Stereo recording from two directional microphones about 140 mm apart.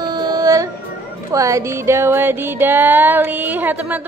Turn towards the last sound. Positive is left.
turn(degrees=-10)  # may be behind; listen again after turning